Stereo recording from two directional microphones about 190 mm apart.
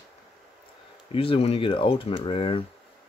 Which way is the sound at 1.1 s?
30° left (ahead or behind).